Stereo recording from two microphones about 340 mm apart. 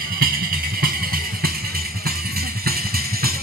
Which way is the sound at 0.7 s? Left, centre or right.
Right.